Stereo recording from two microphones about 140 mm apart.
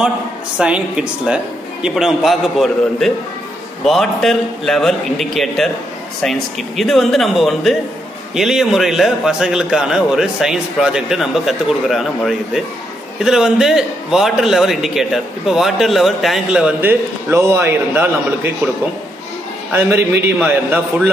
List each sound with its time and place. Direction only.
0.6 s a man's voice: 5° right (ahead or behind)
6.8 s a man's voice: centre (ahead or behind)
17.3 s a man's voice: 20° right (ahead or behind)
19.7 s a man's voice: 15° right (ahead or behind)